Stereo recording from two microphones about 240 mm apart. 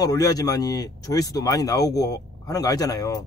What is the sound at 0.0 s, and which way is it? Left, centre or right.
Speech, centre.